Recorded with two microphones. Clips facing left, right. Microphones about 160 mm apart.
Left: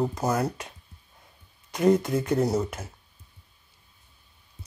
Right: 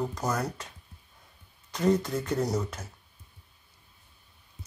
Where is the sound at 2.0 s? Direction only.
10° left (ahead or behind).